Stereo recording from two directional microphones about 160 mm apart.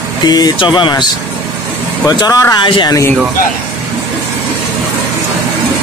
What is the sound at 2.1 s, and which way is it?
Speech, 25° left (ahead or behind).